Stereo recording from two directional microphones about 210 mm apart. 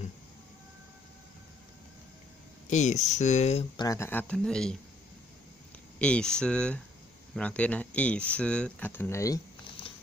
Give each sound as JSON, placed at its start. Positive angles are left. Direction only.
{"t": 2.7, "sound": "speech", "side_deg": 35}
{"t": 3.8, "sound": "speech", "side_deg": 15}
{"t": 5.9, "sound": "speech", "side_deg": 5}